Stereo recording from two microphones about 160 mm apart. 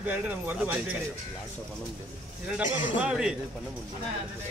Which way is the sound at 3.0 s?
5° right (ahead or behind).